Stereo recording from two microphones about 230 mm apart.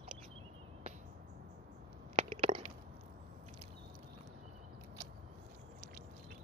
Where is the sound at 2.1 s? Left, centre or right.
Right.